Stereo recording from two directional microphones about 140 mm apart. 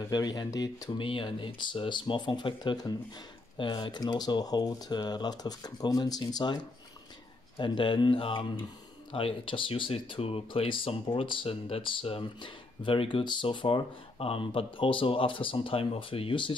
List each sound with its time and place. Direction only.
0.1 s speech: 30° left (ahead or behind)
0.9 s speech: 40° left (ahead or behind)